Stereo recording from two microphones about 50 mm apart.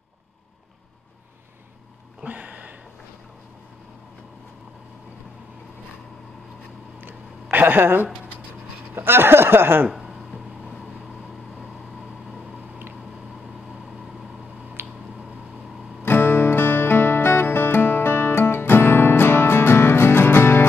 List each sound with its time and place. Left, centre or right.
2.2 s a sound: right
7.5 s a woman's voice: right
8.9 s speech: right
9.8 s a sound: centre
14.8 s squish: right
16.0 s music: left